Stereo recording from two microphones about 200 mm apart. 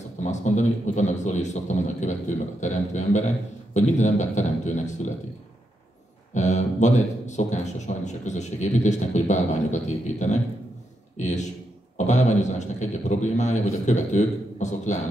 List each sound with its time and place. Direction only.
0.2 s a man's voice: 35° left (ahead or behind)
6.3 s a man's voice: 35° left (ahead or behind)